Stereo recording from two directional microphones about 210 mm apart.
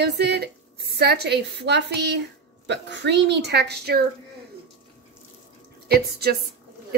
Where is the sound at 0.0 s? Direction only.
50° right (ahead or behind).